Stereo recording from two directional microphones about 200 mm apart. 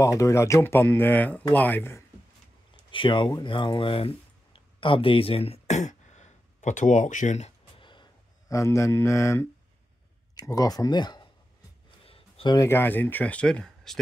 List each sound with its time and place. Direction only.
0.0 s speech: 15° left (ahead or behind)
2.9 s speech: 25° left (ahead or behind)
12.0 s a sound: 30° left (ahead or behind)
12.5 s speech: 10° left (ahead or behind)